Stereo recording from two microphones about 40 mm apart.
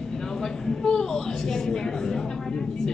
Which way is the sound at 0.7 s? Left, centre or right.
Centre.